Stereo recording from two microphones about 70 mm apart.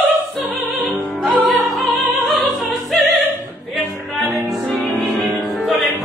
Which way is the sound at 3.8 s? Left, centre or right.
Left.